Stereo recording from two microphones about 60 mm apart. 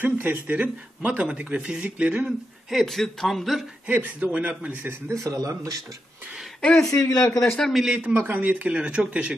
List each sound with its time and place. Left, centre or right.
0.0 s speech: right
2.2 s a man's voice: centre
3.8 s speech: right
5.1 s speech: right
6.6 s speech: centre
6.9 s speech: left
7.5 s a man's voice: centre
8.1 s speech: right